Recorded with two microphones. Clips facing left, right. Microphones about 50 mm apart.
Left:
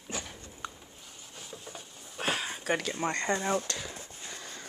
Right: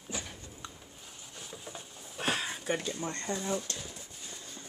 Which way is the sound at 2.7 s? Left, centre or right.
Left.